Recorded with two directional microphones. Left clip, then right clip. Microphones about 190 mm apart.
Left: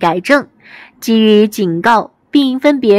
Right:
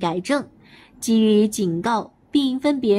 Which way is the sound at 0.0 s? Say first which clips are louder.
Left 11 dB; 25° left (ahead or behind).